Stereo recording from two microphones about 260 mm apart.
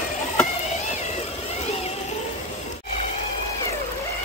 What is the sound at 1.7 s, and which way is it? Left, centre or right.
Cat, left.